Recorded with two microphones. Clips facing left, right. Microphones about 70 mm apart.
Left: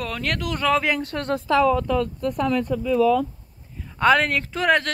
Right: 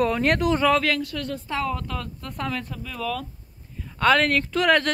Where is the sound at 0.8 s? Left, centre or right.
Centre.